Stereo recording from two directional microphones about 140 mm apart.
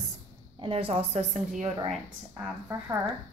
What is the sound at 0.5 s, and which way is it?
Speech, 40° right (ahead or behind).